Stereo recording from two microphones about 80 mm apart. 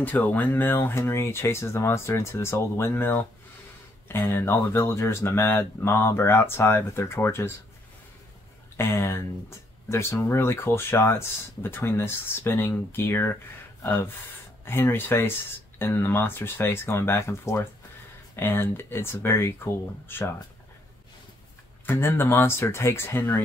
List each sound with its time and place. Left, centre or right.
0.0 s speech: left
8.7 s speech: left
21.9 s speech: left